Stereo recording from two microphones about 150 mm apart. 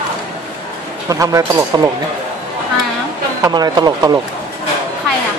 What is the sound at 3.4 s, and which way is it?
Speech, 25° right (ahead or behind).